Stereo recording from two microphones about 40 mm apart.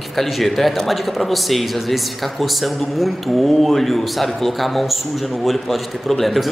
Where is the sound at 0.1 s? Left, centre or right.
Centre.